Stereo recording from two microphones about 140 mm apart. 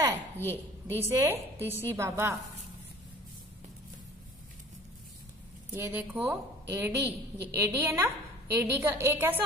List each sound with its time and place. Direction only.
0.4 s speech: 15° left (ahead or behind)
0.9 s a woman's voice: 15° right (ahead or behind)
5.7 s a woman's voice: 15° right (ahead or behind)